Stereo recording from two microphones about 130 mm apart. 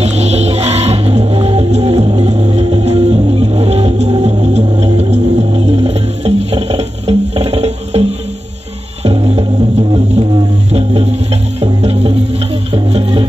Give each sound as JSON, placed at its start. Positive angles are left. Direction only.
{"t": 0.0, "sound": "music", "side_deg": -55}
{"t": 9.0, "sound": "music", "side_deg": -50}